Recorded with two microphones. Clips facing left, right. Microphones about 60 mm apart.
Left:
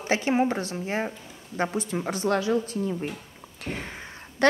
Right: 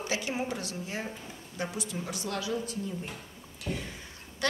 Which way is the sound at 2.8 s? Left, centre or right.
Left.